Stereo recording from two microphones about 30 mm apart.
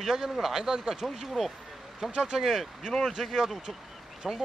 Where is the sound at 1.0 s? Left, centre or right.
Centre.